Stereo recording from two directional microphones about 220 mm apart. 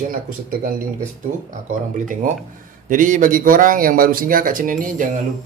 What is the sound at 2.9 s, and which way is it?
Speech, 35° right (ahead or behind).